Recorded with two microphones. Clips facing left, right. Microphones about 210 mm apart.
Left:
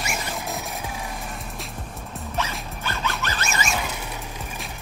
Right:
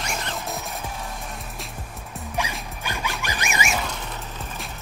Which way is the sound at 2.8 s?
15° right (ahead or behind).